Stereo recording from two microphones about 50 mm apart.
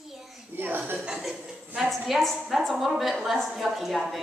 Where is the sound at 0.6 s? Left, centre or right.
Right.